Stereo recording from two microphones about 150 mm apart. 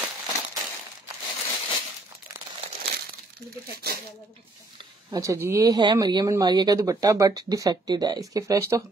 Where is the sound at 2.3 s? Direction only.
10° right (ahead or behind).